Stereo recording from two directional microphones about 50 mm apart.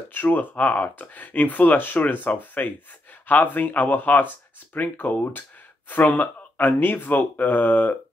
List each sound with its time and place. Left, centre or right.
0.1 s speech: left